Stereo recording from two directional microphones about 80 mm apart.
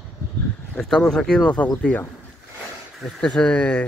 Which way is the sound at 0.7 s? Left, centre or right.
Centre.